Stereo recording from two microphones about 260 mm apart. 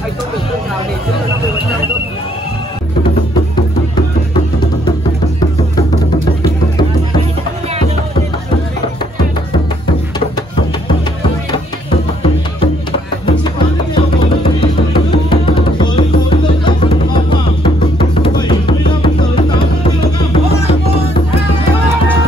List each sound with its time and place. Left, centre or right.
15.2 s music: centre